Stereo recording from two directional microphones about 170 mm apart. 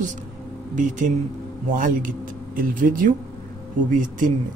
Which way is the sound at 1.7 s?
50° right (ahead or behind).